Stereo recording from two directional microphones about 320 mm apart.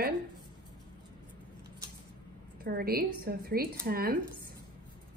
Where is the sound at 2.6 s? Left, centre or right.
Right.